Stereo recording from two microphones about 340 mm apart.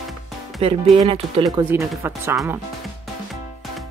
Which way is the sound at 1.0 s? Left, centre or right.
Centre.